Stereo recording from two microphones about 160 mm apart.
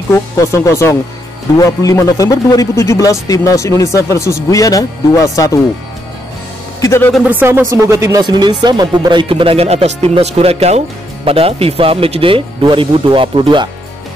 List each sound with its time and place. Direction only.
0.1 s speech: 15° left (ahead or behind)
6.8 s speech: 15° left (ahead or behind)
7.2 s speech: 10° right (ahead or behind); by 13.7 s 30° right (ahead or behind)